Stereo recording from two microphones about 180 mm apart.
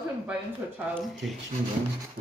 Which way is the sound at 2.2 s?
50° right (ahead or behind).